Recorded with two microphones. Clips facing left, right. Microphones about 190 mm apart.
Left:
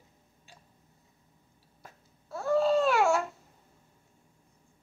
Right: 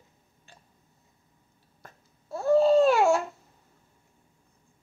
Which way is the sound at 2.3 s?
25° right (ahead or behind).